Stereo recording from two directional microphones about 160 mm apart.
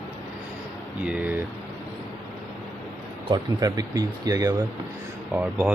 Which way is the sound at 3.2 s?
25° right (ahead or behind).